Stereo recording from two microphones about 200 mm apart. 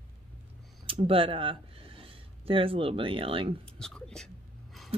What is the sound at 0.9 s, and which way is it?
Speech, 25° right (ahead or behind).